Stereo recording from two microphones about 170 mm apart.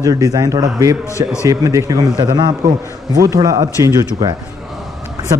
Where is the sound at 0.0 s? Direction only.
20° right (ahead or behind).